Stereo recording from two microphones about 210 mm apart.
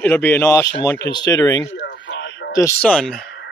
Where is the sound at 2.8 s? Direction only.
5° left (ahead or behind).